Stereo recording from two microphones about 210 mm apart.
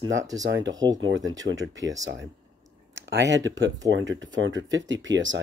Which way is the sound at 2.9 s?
55° right (ahead or behind).